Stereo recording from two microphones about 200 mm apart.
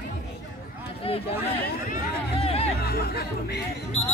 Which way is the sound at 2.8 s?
50° left (ahead or behind).